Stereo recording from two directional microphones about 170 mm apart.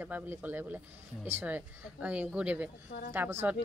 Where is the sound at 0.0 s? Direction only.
10° right (ahead or behind).